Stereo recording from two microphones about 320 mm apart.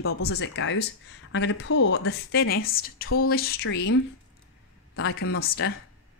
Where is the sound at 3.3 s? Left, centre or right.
Left.